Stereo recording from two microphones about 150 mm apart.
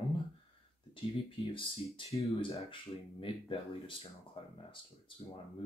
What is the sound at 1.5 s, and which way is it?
Speech, 40° left (ahead or behind).